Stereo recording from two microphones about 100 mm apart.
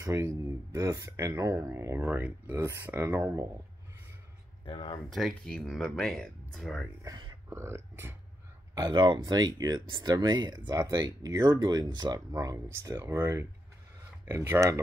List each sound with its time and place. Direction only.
0.0 s speech: 30° right (ahead or behind)
2.0 s speech: 15° right (ahead or behind)
4.6 s speech: 65° left (ahead or behind)
5.1 s speech: 5° left (ahead or behind)
7.4 s speech: 25° right (ahead or behind)
8.7 s speech: 50° right (ahead or behind); by 14.8 s 30° right (ahead or behind)